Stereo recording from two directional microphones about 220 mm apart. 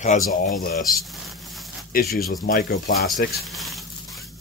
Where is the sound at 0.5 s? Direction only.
40° left (ahead or behind).